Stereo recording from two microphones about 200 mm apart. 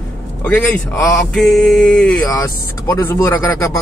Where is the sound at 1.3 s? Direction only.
Centre (ahead or behind).